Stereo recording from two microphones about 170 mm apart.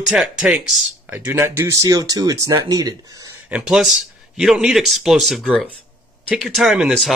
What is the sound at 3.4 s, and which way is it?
A man's voice, 5° right (ahead or behind).